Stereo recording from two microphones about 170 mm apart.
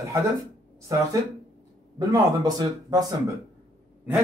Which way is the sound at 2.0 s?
25° right (ahead or behind).